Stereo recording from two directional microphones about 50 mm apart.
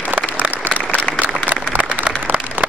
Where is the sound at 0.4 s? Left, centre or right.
Centre.